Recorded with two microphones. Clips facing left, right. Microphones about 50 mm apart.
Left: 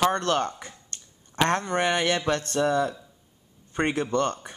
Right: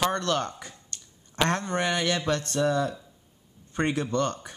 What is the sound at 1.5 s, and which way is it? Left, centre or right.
Speech, left.